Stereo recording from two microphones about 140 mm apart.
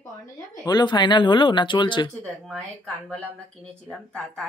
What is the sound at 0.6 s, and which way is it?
Speech, 30° left (ahead or behind).